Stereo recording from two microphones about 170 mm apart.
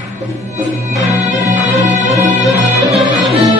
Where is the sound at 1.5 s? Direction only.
45° right (ahead or behind).